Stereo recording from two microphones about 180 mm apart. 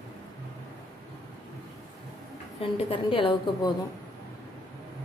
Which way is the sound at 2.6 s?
30° left (ahead or behind).